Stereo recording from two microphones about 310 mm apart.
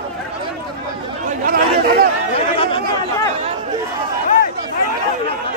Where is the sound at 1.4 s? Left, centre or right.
Right.